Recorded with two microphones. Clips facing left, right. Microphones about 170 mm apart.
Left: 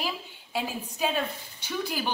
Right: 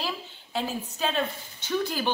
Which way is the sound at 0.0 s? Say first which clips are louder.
Even; 10° left (ahead or behind).